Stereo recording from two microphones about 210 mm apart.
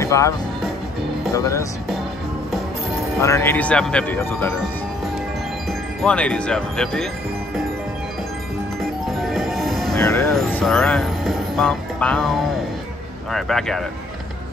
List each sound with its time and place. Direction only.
0.0 s speech: 15° left (ahead or behind)
1.3 s speech: 15° left (ahead or behind)
3.2 s speech: 15° left (ahead or behind)
5.7 s speech: 5° left (ahead or behind)
9.0 s music: centre (ahead or behind)
9.9 s speech: 15° left (ahead or behind)
10.2 s speech: centre (ahead or behind)